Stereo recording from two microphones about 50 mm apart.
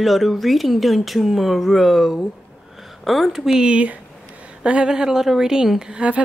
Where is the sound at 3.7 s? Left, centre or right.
Right.